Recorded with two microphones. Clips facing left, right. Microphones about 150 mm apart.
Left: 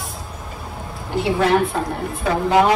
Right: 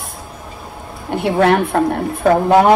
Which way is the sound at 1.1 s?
55° right (ahead or behind).